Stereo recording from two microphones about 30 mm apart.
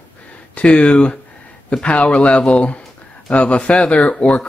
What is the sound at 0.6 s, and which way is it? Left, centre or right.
Speech, left.